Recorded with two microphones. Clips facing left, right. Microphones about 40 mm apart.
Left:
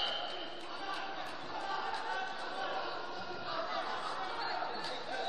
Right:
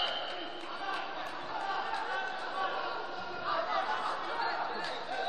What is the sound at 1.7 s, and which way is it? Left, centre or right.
Chatter, centre.